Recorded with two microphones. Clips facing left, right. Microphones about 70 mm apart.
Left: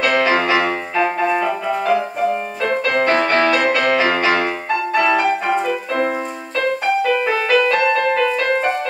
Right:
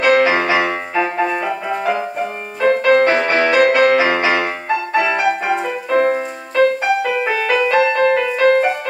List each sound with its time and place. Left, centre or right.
0.0 s music: centre
7.1 s music: centre